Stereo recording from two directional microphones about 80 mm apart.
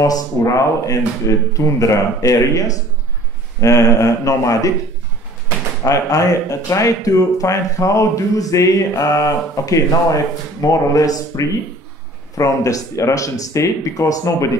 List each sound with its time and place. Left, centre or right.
0.0 s speech: left
5.9 s speech: left